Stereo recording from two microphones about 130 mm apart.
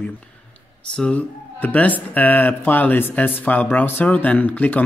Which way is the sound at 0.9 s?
10° left (ahead or behind).